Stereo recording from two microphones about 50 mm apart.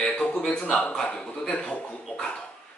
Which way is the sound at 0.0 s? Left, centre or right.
Centre.